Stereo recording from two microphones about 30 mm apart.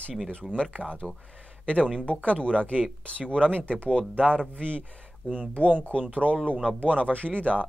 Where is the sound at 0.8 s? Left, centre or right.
Left.